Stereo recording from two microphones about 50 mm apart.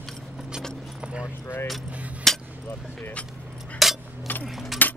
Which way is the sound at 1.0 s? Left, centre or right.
Right.